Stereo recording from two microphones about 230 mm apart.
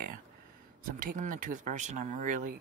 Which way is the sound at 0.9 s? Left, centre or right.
Right.